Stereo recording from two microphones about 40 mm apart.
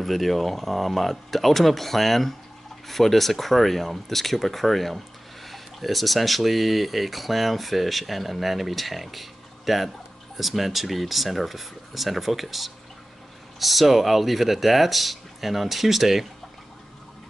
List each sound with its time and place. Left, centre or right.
0.0 s speech: centre